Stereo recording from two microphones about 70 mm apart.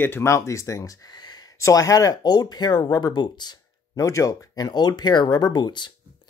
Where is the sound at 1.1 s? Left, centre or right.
Left.